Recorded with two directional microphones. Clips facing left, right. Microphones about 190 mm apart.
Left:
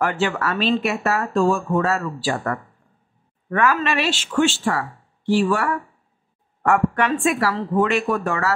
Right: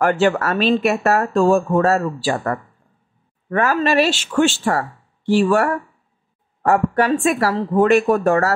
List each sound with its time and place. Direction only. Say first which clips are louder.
0.0 s speech: right 5 dB; 45° right (ahead or behind)
6.6 s speech: right 3 dB; 35° right (ahead or behind)